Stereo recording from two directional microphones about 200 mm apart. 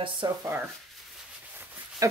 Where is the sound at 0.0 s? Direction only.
25° right (ahead or behind).